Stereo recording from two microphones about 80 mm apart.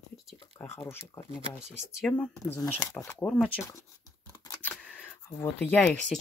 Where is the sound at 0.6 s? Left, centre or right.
Left.